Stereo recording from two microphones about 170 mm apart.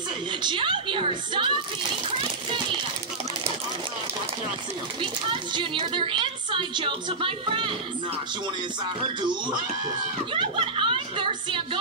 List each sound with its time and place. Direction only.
0.4 s speech: 30° right (ahead or behind)
5.0 s speech: 30° right (ahead or behind)
9.0 s speech: 25° right (ahead or behind)